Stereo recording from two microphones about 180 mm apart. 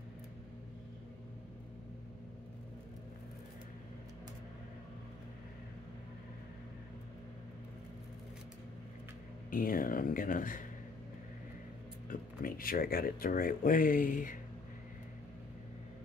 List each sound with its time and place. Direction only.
9.5 s speech: 50° left (ahead or behind)
12.1 s speech: 50° left (ahead or behind)